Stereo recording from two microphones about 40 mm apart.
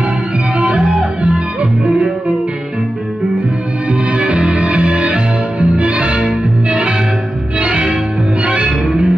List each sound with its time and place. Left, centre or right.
1.2 s music: right
4.1 s music: right
8.6 s music: centre